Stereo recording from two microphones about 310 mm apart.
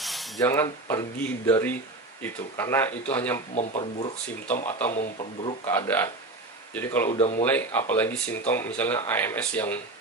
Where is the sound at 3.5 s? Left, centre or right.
Left.